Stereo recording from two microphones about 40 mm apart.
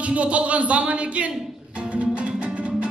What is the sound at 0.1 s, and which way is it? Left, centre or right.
Speech, right.